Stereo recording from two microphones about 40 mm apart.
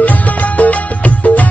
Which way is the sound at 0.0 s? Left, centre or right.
Left.